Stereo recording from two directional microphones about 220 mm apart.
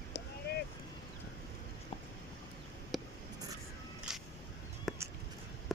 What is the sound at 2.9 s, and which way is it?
Writing, centre (ahead or behind).